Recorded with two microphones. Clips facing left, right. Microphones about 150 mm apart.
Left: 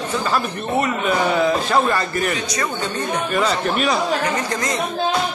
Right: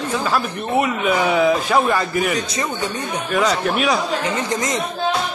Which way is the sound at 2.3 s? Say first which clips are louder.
Right 1 dB; 25° right (ahead or behind).